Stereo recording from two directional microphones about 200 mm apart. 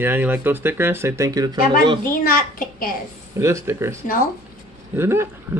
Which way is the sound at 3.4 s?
15° right (ahead or behind).